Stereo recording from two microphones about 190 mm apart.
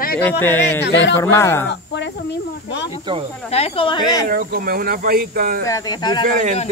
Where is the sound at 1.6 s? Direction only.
65° left (ahead or behind).